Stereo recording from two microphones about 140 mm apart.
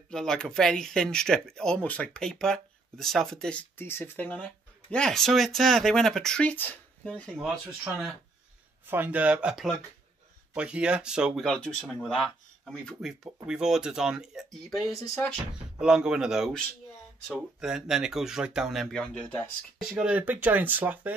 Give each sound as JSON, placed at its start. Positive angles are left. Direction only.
{"t": 0.1, "sound": "speech", "side_deg": 5}
{"t": 8.8, "sound": "speech", "side_deg": -15}
{"t": 14.9, "sound": "speech", "side_deg": 25}
{"t": 15.8, "sound": "speech", "side_deg": -5}
{"t": 17.6, "sound": "speech", "side_deg": -5}
{"t": 19.9, "sound": "speech", "side_deg": -5}